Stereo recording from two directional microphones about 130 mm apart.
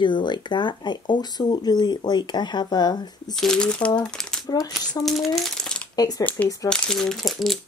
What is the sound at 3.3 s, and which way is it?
Speech, 5° left (ahead or behind).